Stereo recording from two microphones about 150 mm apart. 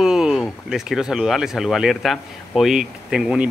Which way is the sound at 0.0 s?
5° right (ahead or behind).